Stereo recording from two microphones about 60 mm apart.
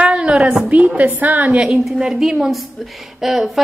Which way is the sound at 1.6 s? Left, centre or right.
Centre.